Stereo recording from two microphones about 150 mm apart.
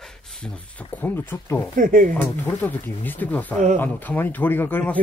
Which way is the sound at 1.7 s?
60° right (ahead or behind).